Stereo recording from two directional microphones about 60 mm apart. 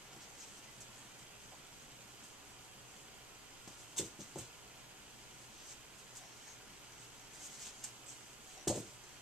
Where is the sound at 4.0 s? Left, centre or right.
Centre.